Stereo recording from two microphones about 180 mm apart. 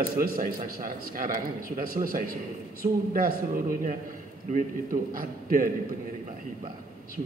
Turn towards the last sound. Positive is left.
turn(degrees=-50)  # may be behind; listen again after turning